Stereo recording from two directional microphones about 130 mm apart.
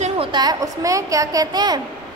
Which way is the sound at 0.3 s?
30° right (ahead or behind).